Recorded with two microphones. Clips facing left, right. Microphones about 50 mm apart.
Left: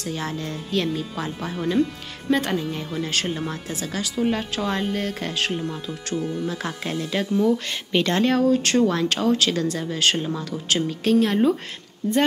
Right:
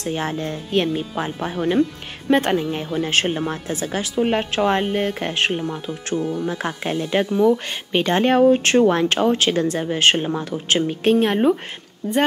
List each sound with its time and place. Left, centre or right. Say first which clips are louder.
0.0 s speech: right 4 dB; right